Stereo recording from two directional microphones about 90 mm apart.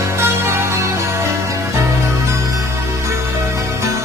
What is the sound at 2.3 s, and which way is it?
Music, 40° right (ahead or behind).